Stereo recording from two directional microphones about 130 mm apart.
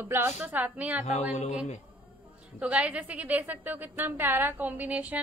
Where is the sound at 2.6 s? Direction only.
10° right (ahead or behind).